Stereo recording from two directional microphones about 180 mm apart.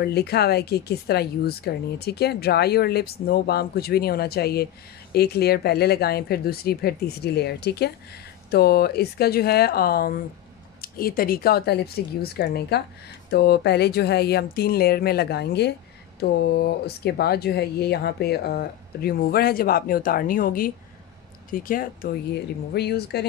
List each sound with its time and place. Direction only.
0.0 s speech: 60° left (ahead or behind)